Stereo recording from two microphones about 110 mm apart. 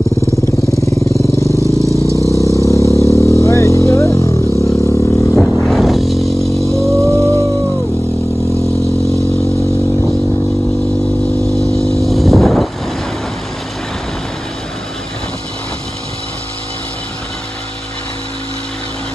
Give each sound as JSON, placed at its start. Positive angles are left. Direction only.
{"t": 0.7, "sound": "vehicle", "side_deg": 30}
{"t": 1.1, "sound": "vehicle", "side_deg": -25}
{"t": 2.1, "sound": "vehicle", "side_deg": 30}
{"t": 5.6, "sound": "music", "side_deg": 0}
{"t": 6.9, "sound": "music", "side_deg": -25}
{"t": 12.0, "sound": "vehicle", "side_deg": 0}